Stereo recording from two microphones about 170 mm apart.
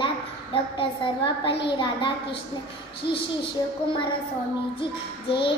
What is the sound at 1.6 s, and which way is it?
Speech, 30° left (ahead or behind).